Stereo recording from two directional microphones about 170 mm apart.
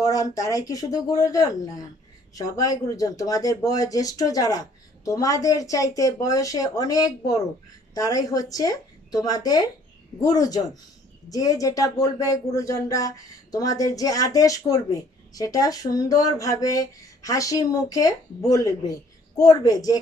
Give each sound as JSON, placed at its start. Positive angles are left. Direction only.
{"t": 0.1, "sound": "speech", "side_deg": 20}